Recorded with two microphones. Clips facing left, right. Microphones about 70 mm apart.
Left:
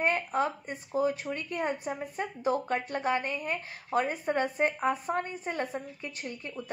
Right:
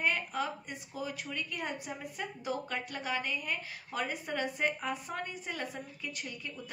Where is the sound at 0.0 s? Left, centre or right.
Left.